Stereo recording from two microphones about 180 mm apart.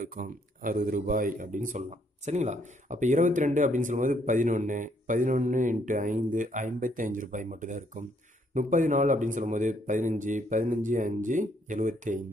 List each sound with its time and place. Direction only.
0.0 s a man's voice: 50° right (ahead or behind)